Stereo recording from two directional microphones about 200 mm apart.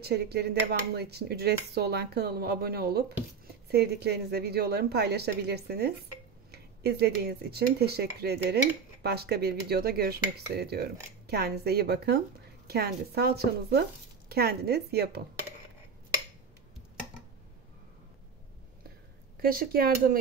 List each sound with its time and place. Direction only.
0.0 s speech: 55° right (ahead or behind)
19.4 s speech: 45° right (ahead or behind)